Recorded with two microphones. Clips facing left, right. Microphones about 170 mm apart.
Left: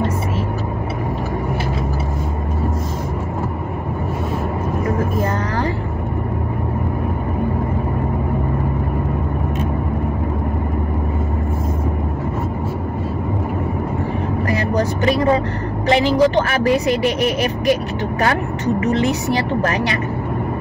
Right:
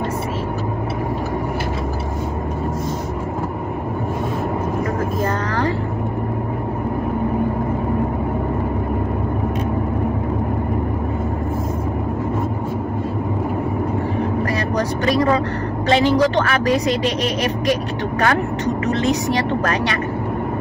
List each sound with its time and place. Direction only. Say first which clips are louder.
15.9 s speech: left 1 dB; 20° left (ahead or behind)
19.6 s speech: left 1 dB; 20° left (ahead or behind)